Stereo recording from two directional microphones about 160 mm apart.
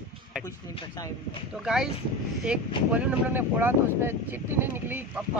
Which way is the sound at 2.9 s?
10° right (ahead or behind).